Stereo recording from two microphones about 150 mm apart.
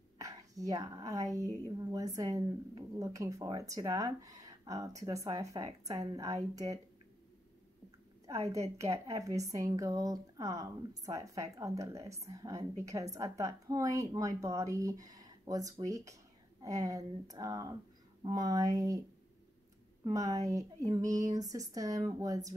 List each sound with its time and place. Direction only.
0.2 s speech: 25° right (ahead or behind)
8.3 s speech: 20° right (ahead or behind)
20.0 s speech: 25° right (ahead or behind)